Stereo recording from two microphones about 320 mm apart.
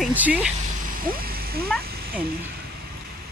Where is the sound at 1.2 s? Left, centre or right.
Right.